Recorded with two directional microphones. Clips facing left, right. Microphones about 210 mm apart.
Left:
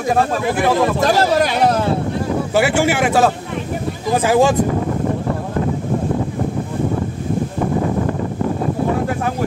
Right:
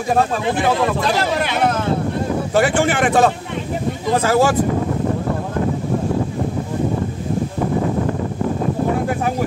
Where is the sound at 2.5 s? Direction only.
10° left (ahead or behind).